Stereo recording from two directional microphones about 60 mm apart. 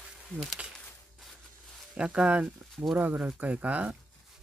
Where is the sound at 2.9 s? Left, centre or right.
Right.